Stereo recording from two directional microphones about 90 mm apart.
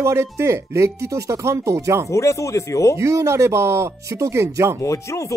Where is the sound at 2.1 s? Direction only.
35° left (ahead or behind).